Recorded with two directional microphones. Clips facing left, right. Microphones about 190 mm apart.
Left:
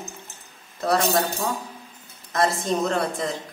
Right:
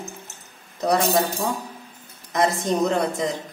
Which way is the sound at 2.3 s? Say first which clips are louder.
Right 2 dB; 15° right (ahead or behind).